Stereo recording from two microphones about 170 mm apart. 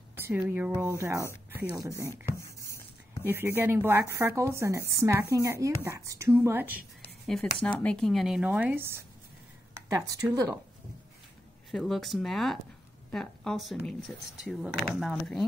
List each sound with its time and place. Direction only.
0.3 s a woman's voice: 10° right (ahead or behind)
3.3 s a woman's voice: 10° right (ahead or behind)
7.8 s speech: 5° left (ahead or behind); by 10.6 s 20° right (ahead or behind)
11.7 s speech: centre (ahead or behind)